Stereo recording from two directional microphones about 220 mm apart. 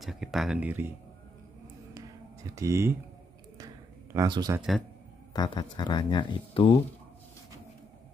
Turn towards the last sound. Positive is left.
turn(degrees=25)  # may be behind; listen again after turning